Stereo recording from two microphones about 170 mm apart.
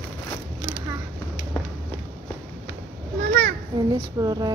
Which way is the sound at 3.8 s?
25° right (ahead or behind).